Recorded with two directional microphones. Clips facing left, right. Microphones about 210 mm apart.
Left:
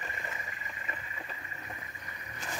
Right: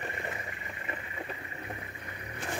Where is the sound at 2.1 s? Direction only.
55° right (ahead or behind).